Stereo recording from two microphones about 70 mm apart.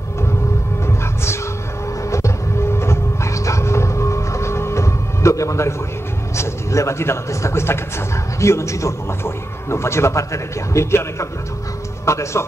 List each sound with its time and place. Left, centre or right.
0.8 s music: left
2.0 s train: left
6.3 s a man's voice: left